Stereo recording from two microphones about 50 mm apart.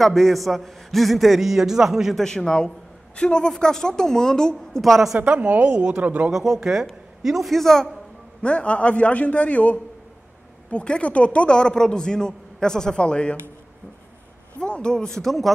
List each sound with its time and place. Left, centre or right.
0.0 s a man's voice: centre
2.1 s a woman's voice: centre
4.8 s a man's voice: centre
5.2 s a woman's voice: right
6.3 s a man's voice: centre
7.5 s a woman's voice: centre
8.4 s a man's voice: left
14.6 s a woman's voice: centre